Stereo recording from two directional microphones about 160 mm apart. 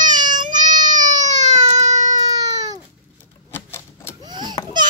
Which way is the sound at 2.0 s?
25° right (ahead or behind).